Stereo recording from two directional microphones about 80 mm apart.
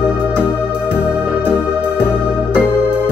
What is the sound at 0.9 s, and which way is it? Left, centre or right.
Music, left.